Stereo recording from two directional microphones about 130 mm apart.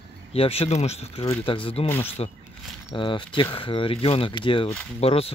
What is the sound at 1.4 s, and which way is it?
Speech, 45° left (ahead or behind).